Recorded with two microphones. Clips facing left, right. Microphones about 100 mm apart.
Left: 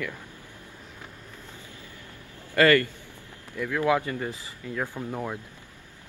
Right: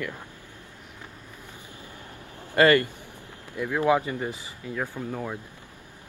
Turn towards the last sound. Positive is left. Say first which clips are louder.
# even
turn(degrees=10)  # may be behind; listen again after turning